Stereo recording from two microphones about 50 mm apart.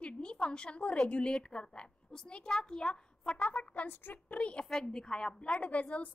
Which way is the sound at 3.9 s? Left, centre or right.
Left.